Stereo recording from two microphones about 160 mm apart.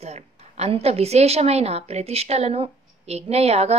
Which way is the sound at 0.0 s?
45° right (ahead or behind).